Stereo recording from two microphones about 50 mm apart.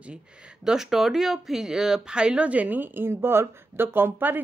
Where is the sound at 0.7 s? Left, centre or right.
Centre; by 2.8 s right.